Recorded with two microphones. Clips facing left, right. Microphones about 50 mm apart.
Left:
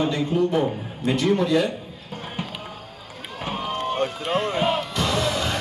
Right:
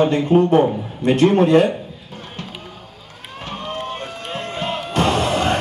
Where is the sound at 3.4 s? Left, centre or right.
Centre.